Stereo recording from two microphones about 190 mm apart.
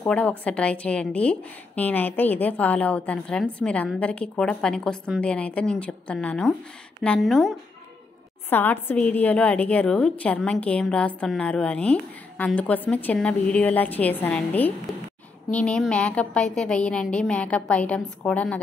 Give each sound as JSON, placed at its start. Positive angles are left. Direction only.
{"t": 0.0, "sound": "a woman's voice", "side_deg": 5}
{"t": 8.5, "sound": "a woman's voice", "side_deg": 10}